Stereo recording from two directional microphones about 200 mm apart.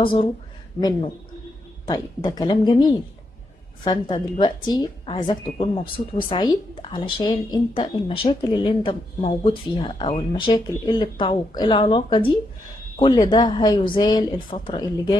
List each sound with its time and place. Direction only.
0.0 s speech: 25° left (ahead or behind)